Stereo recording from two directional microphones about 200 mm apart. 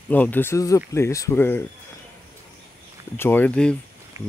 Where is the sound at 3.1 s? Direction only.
10° left (ahead or behind).